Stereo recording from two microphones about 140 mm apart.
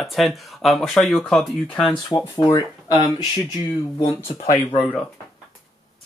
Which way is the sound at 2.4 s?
30° left (ahead or behind).